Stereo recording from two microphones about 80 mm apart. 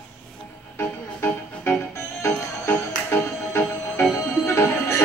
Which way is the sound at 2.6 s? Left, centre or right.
Left.